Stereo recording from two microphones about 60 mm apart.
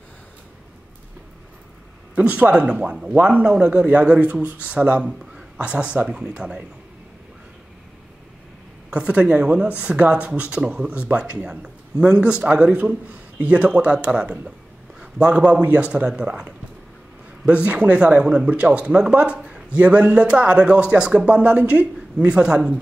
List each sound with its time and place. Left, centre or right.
2.1 s speech: right
8.9 s speech: centre